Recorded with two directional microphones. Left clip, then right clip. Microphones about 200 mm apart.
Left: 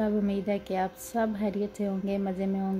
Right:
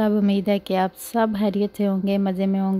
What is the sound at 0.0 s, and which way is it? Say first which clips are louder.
A woman's voice: right 7 dB; 40° right (ahead or behind).